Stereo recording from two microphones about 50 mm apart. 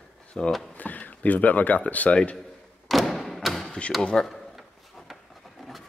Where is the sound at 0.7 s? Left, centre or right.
Left.